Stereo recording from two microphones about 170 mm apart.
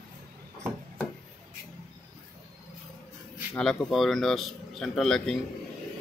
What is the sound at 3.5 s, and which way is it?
Speech, centre (ahead or behind).